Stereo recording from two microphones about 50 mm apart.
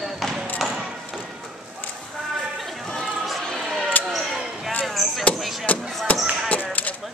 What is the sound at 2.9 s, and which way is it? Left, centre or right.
Chatter, centre.